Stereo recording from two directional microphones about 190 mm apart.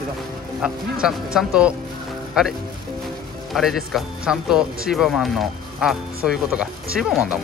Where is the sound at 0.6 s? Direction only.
5° right (ahead or behind).